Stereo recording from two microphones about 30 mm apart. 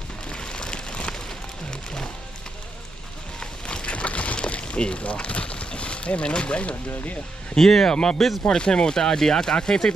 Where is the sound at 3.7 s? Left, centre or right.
Left.